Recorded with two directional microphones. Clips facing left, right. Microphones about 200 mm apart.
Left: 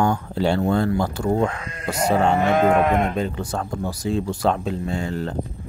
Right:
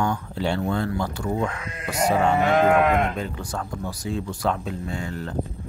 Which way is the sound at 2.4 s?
20° left (ahead or behind).